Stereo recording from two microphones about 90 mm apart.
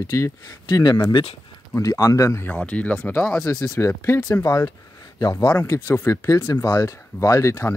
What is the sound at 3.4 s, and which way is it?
Speech, 40° left (ahead or behind).